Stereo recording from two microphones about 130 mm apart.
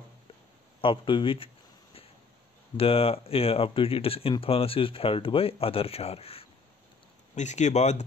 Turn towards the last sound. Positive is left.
turn(degrees=60)  # may be behind; listen again after turning